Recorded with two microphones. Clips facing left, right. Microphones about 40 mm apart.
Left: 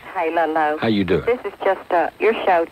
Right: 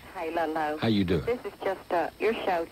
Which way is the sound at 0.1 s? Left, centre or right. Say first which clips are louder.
Left 10 dB; left.